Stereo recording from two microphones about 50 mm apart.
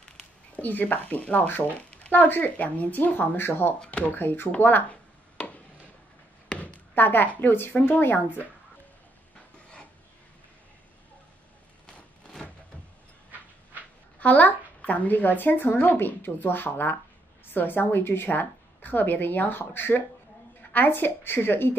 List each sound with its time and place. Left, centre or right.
0.6 s speech: left
1.9 s a sound: left
2.2 s a woman's voice: left
6.5 s chop: left
7.0 s a woman's voice: left
14.2 s a woman's voice: left